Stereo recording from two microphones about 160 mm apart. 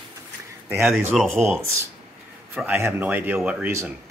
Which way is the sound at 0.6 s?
15° right (ahead or behind).